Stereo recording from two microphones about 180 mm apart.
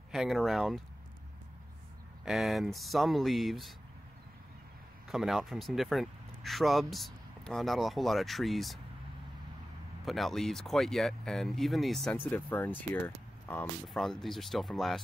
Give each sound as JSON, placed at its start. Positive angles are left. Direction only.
{"t": 0.1, "sound": "speech", "side_deg": 0}
{"t": 2.2, "sound": "speech", "side_deg": 0}
{"t": 5.0, "sound": "speech", "side_deg": 0}
{"t": 10.0, "sound": "speech", "side_deg": 0}